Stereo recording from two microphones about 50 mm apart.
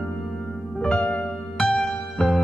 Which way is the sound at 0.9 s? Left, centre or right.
Centre.